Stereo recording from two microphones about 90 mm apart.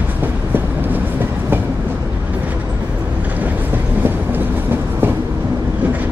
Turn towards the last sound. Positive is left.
turn(degrees=-25)  # may be behind; listen again after turning